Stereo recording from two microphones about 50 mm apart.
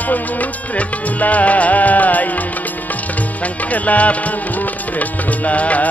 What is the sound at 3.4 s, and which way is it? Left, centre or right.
Music, left.